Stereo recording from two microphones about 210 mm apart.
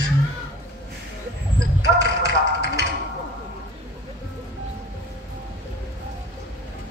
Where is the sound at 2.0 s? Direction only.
50° left (ahead or behind).